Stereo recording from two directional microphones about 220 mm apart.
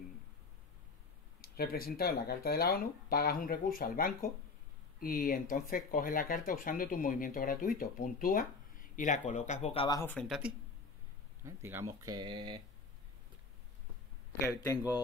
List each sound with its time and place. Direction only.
1.6 s speech: 45° left (ahead or behind); by 10.5 s centre (ahead or behind)
11.4 s speech: 10° right (ahead or behind)